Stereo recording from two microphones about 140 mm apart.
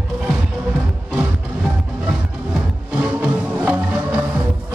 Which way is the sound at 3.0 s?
10° right (ahead or behind).